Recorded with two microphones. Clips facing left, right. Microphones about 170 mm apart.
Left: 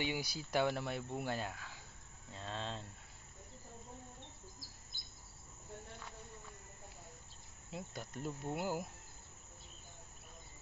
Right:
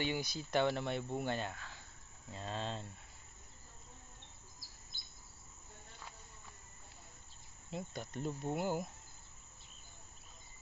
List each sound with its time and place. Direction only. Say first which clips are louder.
0.0 s speech: right 2 dB; 10° left (ahead or behind)
7.7 s speech: right 3 dB; 5° left (ahead or behind)